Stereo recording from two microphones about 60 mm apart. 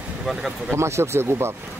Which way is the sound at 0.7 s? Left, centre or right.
Right.